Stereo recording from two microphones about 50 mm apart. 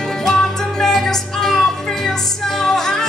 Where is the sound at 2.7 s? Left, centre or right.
Centre.